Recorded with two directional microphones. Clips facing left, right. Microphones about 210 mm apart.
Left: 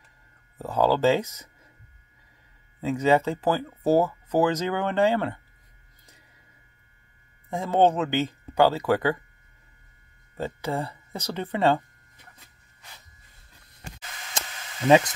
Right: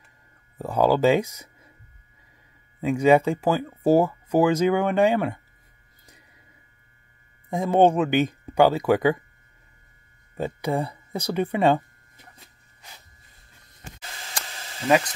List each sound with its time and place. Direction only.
0.6 s speech: 15° right (ahead or behind)
2.8 s speech: 15° right (ahead or behind)
7.4 s speech: 15° right (ahead or behind)
10.3 s speech: 15° right (ahead or behind)
13.8 s a sound: 30° right (ahead or behind)